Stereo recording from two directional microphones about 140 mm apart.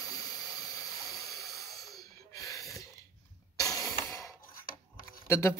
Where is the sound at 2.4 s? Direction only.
25° left (ahead or behind).